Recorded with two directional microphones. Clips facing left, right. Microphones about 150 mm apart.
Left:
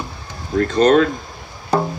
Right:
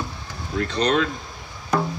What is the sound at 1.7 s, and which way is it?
Music, 30° left (ahead or behind).